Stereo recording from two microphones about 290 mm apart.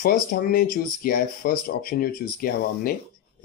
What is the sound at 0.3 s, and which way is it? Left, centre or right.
Speech, left.